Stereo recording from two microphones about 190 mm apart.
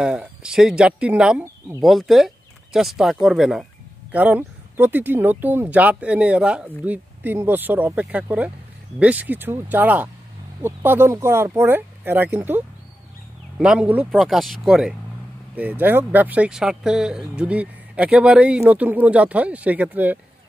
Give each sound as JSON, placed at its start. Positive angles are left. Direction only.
{"t": 0.0, "sound": "speech", "side_deg": -5}
{"t": 13.6, "sound": "speech", "side_deg": -5}